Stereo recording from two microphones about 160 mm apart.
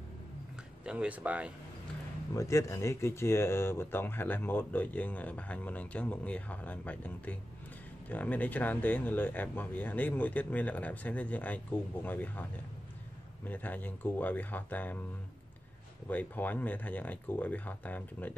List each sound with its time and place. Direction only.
0.8 s speech: 10° right (ahead or behind)
2.3 s speech: 20° left (ahead or behind)
16.1 s speech: 10° left (ahead or behind)